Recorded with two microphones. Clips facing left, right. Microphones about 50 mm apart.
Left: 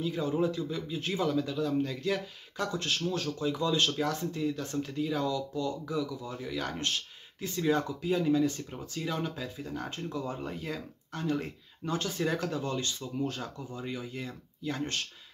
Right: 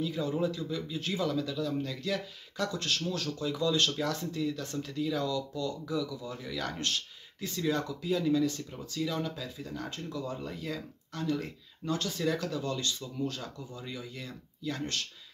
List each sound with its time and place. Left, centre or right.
0.0 s speech: centre